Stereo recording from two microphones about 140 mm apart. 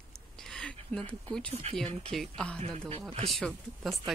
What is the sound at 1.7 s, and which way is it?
Dog, 50° right (ahead or behind).